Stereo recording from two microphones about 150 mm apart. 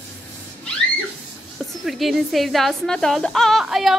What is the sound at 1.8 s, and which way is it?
Speech, centre (ahead or behind).